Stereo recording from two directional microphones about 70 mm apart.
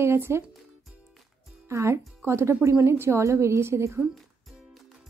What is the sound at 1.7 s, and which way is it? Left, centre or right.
Speech, right.